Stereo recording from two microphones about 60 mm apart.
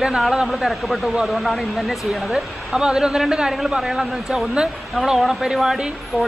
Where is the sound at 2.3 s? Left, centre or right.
Centre.